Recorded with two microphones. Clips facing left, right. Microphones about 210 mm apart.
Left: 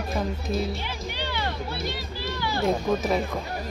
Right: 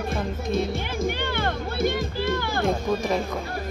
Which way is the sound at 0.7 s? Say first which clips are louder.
Right 6 dB; 50° right (ahead or behind).